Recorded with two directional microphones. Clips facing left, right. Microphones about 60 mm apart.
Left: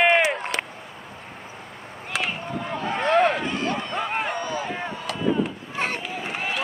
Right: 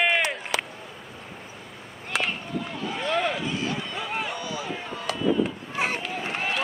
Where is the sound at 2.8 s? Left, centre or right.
Left.